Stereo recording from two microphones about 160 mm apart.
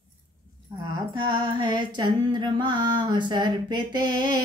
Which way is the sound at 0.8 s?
25° right (ahead or behind).